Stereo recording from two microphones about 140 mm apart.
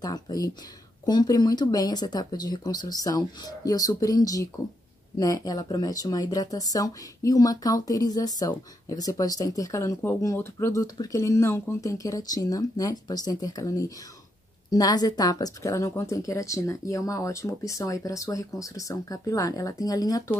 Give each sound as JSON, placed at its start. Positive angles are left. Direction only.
{"t": 0.0, "sound": "speech", "side_deg": 30}